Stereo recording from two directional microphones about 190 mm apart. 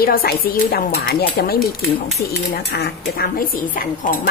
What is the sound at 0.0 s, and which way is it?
Speech, 50° left (ahead or behind).